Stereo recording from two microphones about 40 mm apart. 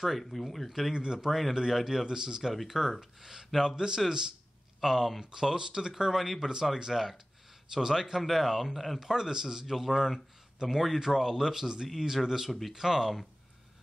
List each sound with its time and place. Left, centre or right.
0.0 s speech: centre
0.9 s speech: centre
2.0 s speech: centre
2.5 s speech: centre
4.7 s speech: centre
5.2 s speech: centre
6.1 s speech: centre
9.1 s speech: centre
12.4 s speech: centre